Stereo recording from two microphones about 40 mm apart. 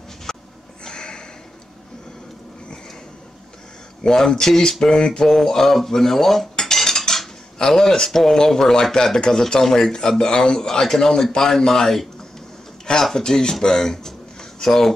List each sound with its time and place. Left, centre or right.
0.3 s a sound: centre
4.0 s a man's voice: centre
6.6 s cutlery: centre
8.1 s a man's voice: centre